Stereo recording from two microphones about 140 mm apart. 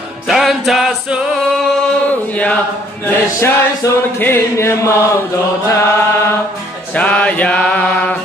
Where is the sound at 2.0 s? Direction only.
10° left (ahead or behind).